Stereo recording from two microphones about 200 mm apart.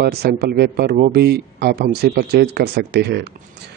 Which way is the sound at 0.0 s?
50° right (ahead or behind).